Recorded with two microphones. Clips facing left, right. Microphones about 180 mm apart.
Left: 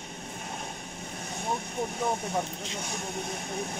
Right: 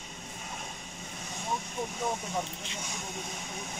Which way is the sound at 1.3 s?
60° left (ahead or behind).